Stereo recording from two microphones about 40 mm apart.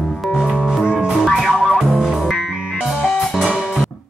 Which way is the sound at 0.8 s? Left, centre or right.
Right.